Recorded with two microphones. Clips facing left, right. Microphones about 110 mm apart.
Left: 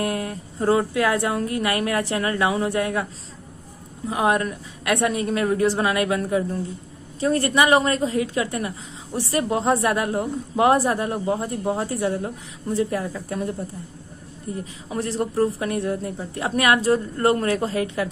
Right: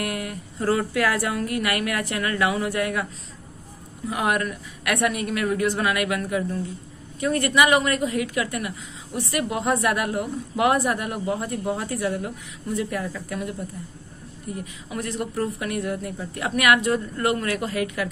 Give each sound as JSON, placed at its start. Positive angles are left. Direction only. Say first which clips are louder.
{"t": 0.0, "sound": "a woman's voice", "louder": "left 3 dB", "side_deg": 30}
{"t": 4.1, "sound": "a woman's voice", "louder": "left 3 dB", "side_deg": 25}